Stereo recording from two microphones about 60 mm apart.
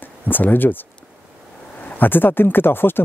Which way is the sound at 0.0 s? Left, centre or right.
Left.